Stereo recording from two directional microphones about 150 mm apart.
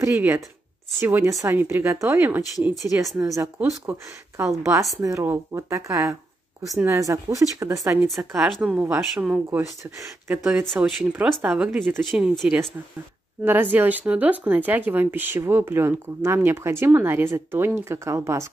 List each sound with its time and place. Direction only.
0.0 s speech: 15° right (ahead or behind)
2.5 s speech: centre (ahead or behind)
3.2 s a woman's voice: 20° right (ahead or behind)
8.4 s speech: centre (ahead or behind)
10.7 s speech: centre (ahead or behind)
13.4 s speech: 10° right (ahead or behind)